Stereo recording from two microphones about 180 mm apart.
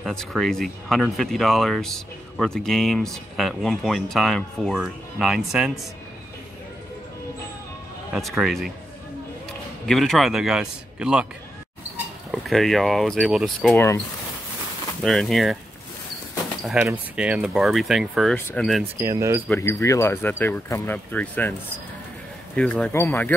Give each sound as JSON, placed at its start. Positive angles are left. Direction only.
{"t": 0.0, "sound": "speech", "side_deg": 0}
{"t": 8.1, "sound": "speech", "side_deg": 0}
{"t": 9.8, "sound": "speech", "side_deg": 0}
{"t": 12.3, "sound": "speech", "side_deg": 0}
{"t": 13.7, "sound": "speech", "side_deg": 15}
{"t": 15.0, "sound": "speech", "side_deg": 0}
{"t": 16.7, "sound": "speech", "side_deg": -10}
{"t": 18.9, "sound": "speech", "side_deg": -15}
{"t": 19.5, "sound": "speech", "side_deg": 15}
{"t": 22.6, "sound": "speech", "side_deg": 5}